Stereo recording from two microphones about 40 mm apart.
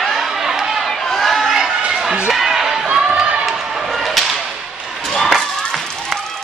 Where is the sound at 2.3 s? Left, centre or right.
Centre.